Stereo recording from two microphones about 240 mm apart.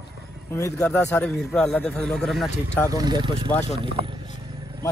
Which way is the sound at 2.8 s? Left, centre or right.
Centre.